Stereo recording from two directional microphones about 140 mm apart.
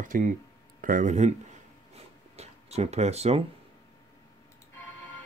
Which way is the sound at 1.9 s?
50° right (ahead or behind).